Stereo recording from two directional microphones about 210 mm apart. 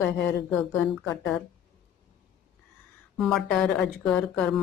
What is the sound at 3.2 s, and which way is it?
Speech, centre (ahead or behind).